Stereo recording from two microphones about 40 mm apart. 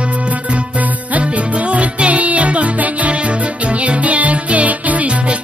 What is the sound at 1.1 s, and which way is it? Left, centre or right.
Music, right.